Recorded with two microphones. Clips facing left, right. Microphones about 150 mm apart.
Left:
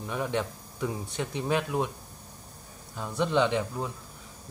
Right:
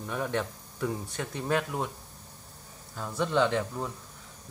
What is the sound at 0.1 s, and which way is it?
Speech, 5° left (ahead or behind).